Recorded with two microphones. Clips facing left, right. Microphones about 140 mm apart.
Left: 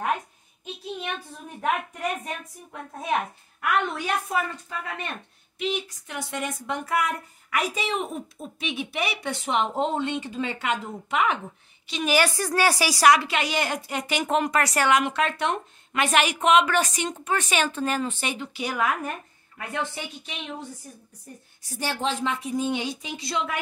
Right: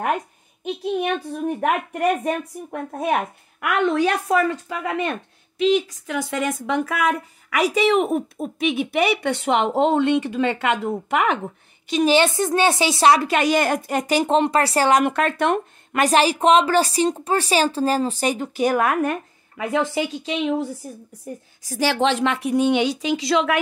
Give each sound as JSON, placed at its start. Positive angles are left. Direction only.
{"t": 0.7, "sound": "speech", "side_deg": -65}
{"t": 3.6, "sound": "speech", "side_deg": -80}
{"t": 12.1, "sound": "a woman's voice", "side_deg": -25}
{"t": 13.2, "sound": "speech", "side_deg": -45}
{"t": 15.0, "sound": "speech", "side_deg": -50}
{"t": 16.0, "sound": "speech", "side_deg": -35}
{"t": 18.9, "sound": "speech", "side_deg": -85}
{"t": 21.6, "sound": "a woman's voice", "side_deg": -90}